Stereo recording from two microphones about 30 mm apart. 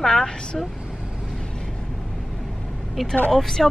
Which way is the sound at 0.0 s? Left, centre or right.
Left.